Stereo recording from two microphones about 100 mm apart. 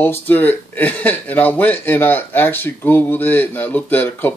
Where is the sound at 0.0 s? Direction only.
20° left (ahead or behind).